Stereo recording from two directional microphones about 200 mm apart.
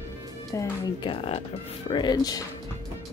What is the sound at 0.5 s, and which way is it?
Speech, 20° left (ahead or behind).